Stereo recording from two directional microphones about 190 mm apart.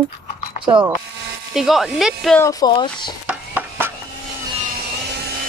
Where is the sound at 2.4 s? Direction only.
25° left (ahead or behind).